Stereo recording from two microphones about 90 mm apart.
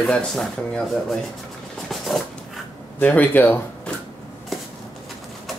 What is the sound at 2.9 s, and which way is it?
Speech, 20° left (ahead or behind).